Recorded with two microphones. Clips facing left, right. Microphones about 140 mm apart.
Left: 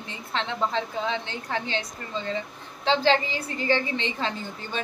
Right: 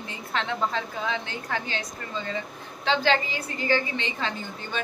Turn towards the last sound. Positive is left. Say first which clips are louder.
# left 2 dB
turn(degrees=30)  # may be behind; listen again after turning